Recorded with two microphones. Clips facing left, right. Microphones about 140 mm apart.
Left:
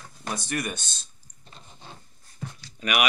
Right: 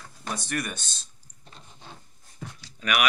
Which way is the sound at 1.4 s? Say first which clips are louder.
Even; 5° left (ahead or behind).